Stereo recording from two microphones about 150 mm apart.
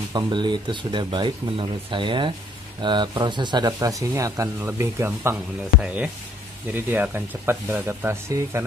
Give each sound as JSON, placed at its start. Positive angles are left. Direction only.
{"t": 0.1, "sound": "speech", "side_deg": -30}
{"t": 5.3, "sound": "speech", "side_deg": -5}